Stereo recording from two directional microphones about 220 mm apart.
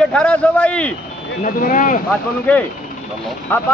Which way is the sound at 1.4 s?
40° left (ahead or behind).